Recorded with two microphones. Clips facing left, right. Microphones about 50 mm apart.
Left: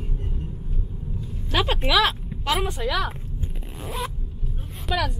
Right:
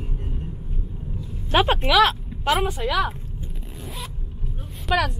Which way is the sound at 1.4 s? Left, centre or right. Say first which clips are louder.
Right 5 dB; right.